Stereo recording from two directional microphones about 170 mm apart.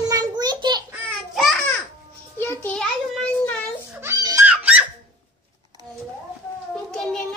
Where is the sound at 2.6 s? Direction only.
5° left (ahead or behind).